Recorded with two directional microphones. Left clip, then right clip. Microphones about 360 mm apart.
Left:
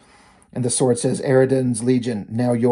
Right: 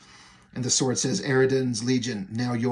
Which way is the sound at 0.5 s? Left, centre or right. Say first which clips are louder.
Left 7 dB; centre.